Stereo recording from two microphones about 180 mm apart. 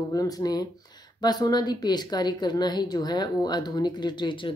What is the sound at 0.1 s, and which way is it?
Speech, 20° left (ahead or behind).